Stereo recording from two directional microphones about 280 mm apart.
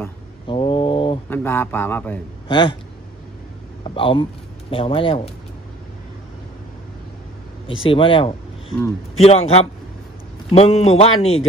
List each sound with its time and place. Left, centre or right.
0.0 s a sound: centre
1.3 s a man's voice: centre
3.8 s speech: centre
7.8 s a man's voice: centre